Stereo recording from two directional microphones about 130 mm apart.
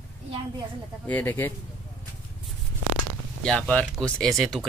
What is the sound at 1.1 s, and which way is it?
Speech, 15° left (ahead or behind).